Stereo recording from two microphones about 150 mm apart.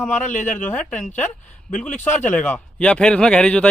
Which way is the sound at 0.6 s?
10° left (ahead or behind).